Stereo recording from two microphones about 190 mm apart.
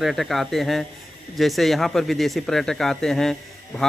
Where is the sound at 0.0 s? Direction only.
Centre (ahead or behind).